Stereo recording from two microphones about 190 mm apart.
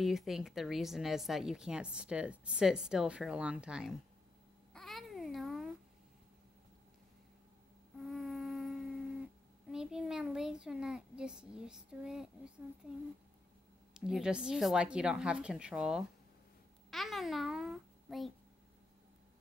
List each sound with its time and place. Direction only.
0.0 s a woman's voice: centre (ahead or behind)
4.7 s babbling: centre (ahead or behind)
8.0 s insect: centre (ahead or behind)
9.7 s a woman's voice: 5° right (ahead or behind)
13.9 s a woman's voice: 5° right (ahead or behind)